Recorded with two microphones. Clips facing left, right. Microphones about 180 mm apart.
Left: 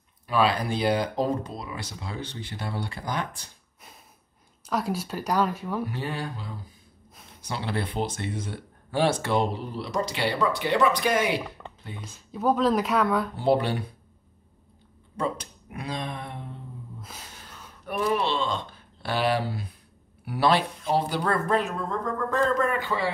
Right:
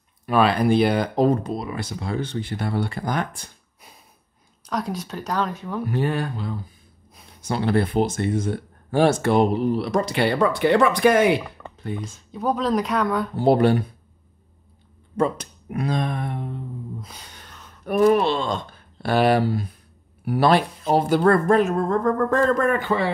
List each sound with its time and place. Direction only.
0.3 s speech: 60° right (ahead or behind)
4.6 s speech: 5° left (ahead or behind)
5.9 s speech: 55° right (ahead or behind)
12.0 s speech: 5° left (ahead or behind)
13.4 s speech: 50° right (ahead or behind)
15.1 s speech: 50° right (ahead or behind)
17.0 s a sound: centre (ahead or behind)
17.8 s speech: 45° right (ahead or behind)